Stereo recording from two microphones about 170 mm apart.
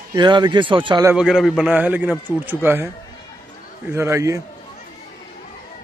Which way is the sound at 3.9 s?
15° right (ahead or behind).